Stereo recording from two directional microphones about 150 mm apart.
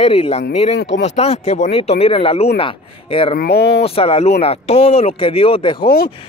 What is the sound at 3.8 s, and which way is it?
Speech, 40° left (ahead or behind).